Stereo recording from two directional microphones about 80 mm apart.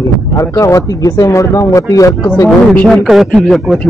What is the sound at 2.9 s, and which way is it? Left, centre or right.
Speech, centre.